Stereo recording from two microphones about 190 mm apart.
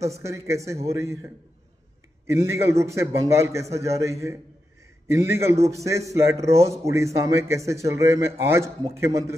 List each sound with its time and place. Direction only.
0.2 s a man's voice: 15° right (ahead or behind)
2.2 s a man's voice: 15° right (ahead or behind)